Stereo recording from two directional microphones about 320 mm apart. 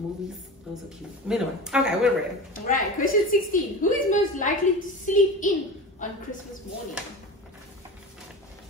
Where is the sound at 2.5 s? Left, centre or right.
Left.